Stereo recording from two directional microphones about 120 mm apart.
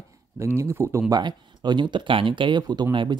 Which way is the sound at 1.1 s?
40° right (ahead or behind).